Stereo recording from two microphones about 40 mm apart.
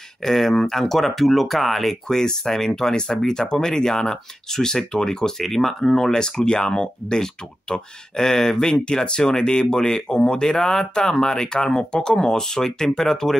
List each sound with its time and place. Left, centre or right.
0.2 s speech: centre
5.4 s speech: centre